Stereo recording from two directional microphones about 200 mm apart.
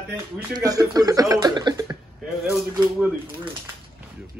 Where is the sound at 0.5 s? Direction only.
20° right (ahead or behind).